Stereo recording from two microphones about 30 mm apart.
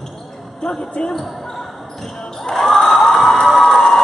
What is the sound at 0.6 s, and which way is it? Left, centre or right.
Basketball bounce, left.